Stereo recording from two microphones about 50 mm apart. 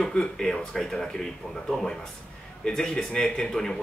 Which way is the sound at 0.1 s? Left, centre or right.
Centre.